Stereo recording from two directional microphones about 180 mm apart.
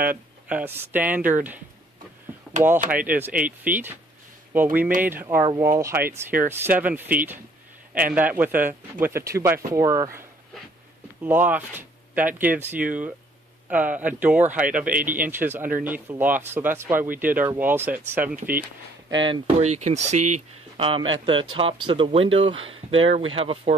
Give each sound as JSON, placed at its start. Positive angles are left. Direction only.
{"t": 0.0, "sound": "a man's voice", "side_deg": -10}
{"t": 3.1, "sound": "a man's voice", "side_deg": -10}
{"t": 5.0, "sound": "a man's voice", "side_deg": -10}
{"t": 11.2, "sound": "a man's voice", "side_deg": -10}
{"t": 19.1, "sound": "speech", "side_deg": -25}
{"t": 19.6, "sound": "speech", "side_deg": -40}